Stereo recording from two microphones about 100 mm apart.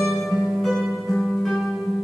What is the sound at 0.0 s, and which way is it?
Music, centre (ahead or behind).